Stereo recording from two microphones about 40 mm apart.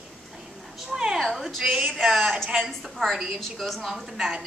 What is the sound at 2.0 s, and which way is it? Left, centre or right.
Speech, centre.